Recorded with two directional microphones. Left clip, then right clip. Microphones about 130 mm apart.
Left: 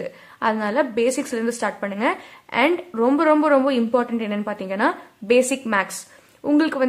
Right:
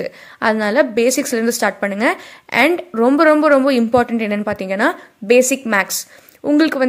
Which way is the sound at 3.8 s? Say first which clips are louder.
Right 6 dB; 40° right (ahead or behind).